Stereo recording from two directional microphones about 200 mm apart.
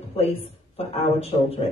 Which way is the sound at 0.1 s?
30° left (ahead or behind).